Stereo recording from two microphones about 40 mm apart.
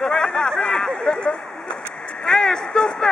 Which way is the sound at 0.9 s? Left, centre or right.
Centre.